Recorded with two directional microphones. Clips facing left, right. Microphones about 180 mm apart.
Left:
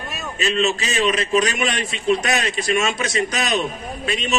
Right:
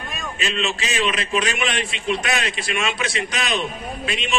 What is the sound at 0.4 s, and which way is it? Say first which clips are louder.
A man's voice: left 5 dB; 40° left (ahead or behind).